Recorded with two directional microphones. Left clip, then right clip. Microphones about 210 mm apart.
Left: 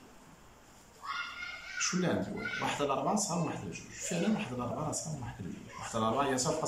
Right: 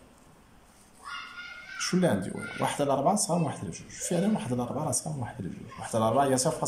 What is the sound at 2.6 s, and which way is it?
Speech, 30° right (ahead or behind).